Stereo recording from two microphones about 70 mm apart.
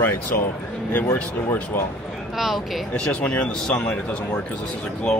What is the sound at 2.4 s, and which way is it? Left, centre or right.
Speech, centre.